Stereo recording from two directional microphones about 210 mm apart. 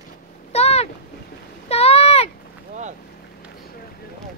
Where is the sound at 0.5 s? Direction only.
30° left (ahead or behind).